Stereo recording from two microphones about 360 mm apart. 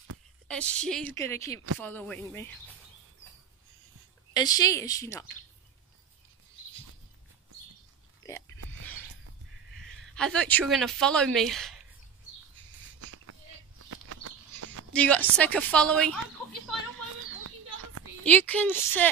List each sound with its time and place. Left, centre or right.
0.5 s a woman's voice: centre
4.3 s speech: centre
9.8 s speech: centre
13.0 s a sound: right
14.9 s a woman's voice: centre
17.4 s a sound: right
18.2 s a woman's voice: centre